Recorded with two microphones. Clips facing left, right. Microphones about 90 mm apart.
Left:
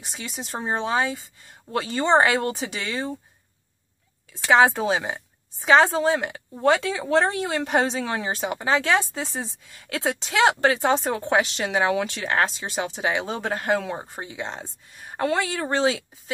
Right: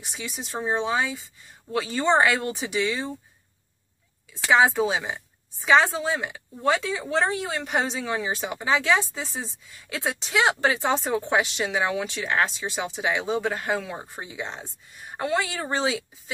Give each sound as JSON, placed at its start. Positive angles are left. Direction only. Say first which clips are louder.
{"t": 0.0, "sound": "speech", "louder": "even", "side_deg": 40}
{"t": 4.5, "sound": "speech", "louder": "left 2 dB", "side_deg": 45}
{"t": 10.2, "sound": "speech", "louder": "left 3 dB", "side_deg": 45}
{"t": 14.1, "sound": "speech", "louder": "left 2 dB", "side_deg": 40}
{"t": 15.6, "sound": "speech", "louder": "left 4 dB", "side_deg": 45}